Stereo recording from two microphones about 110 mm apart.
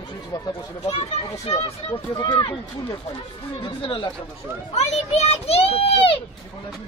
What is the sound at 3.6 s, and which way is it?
Speech, 50° left (ahead or behind).